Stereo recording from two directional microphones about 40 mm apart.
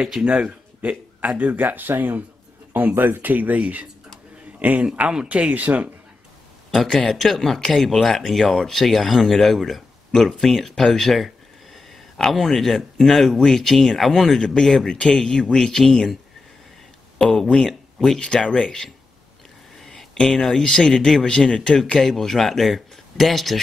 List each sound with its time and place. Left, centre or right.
0.2 s a man's voice: right
5.1 s speech: right
5.5 s speech: right
6.9 s speech: centre
14.4 s speech: centre
17.2 s speech: centre
17.6 s speech: centre
18.2 s speech: left
19.8 s a sound: centre
20.2 s speech: centre
22.0 s speech: centre